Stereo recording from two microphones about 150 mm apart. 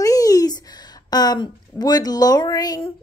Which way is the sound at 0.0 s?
25° left (ahead or behind).